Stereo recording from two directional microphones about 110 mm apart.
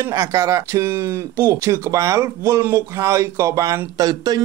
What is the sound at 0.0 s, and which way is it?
Speech, 30° right (ahead or behind).